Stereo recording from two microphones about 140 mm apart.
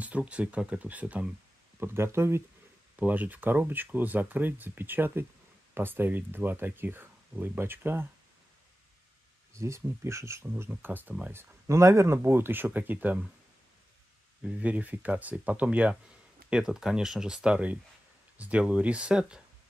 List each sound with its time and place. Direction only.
0.0 s speech: 10° right (ahead or behind)
9.5 s speech: 20° right (ahead or behind)
14.4 s speech: 10° right (ahead or behind)